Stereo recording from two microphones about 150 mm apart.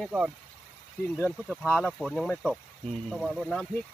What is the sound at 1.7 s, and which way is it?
Speech, 5° left (ahead or behind).